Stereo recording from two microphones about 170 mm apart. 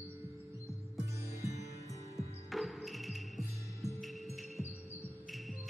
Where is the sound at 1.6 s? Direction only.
20° left (ahead or behind).